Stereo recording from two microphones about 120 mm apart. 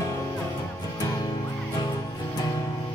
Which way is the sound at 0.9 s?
30° left (ahead or behind).